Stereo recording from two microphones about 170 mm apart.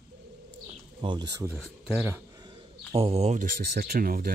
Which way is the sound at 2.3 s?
25° right (ahead or behind).